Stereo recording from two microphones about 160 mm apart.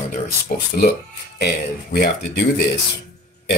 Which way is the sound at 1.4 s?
85° left.